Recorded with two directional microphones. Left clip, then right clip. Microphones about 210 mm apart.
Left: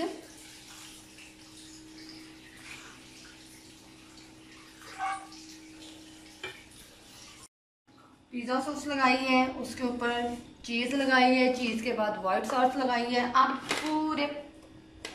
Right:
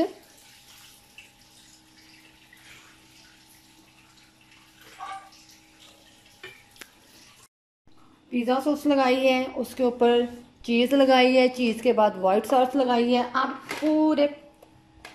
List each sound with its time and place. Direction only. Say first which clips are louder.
8.3 s speech: right 8 dB; 40° right (ahead or behind)